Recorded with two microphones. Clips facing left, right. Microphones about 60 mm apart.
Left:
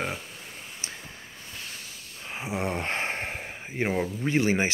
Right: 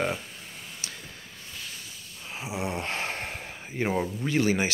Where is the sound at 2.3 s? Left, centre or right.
Left.